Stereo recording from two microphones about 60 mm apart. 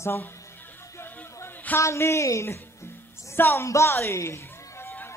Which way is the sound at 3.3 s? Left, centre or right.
Left.